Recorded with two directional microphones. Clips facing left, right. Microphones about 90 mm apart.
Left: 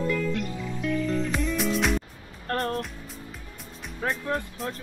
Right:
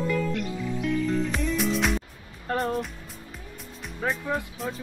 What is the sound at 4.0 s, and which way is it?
Speech, centre (ahead or behind).